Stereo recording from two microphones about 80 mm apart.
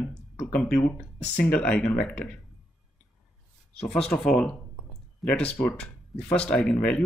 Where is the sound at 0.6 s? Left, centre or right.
Centre.